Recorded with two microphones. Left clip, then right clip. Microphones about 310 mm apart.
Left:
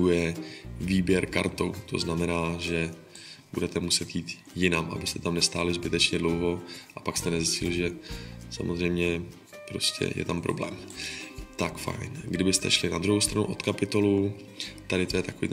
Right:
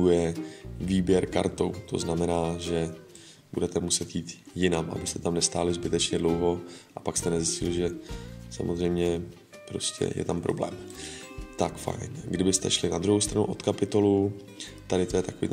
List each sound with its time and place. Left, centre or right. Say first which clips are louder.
0.0 s speech: right 2 dB; right